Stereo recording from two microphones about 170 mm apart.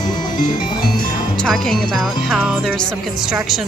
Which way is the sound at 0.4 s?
55° left (ahead or behind).